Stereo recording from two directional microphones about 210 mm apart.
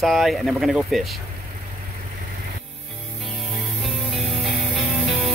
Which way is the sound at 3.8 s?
Centre (ahead or behind).